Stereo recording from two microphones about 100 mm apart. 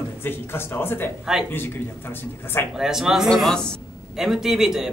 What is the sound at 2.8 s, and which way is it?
A man's voice, 5° right (ahead or behind).